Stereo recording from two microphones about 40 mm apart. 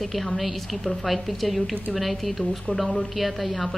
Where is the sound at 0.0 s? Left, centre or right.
Centre.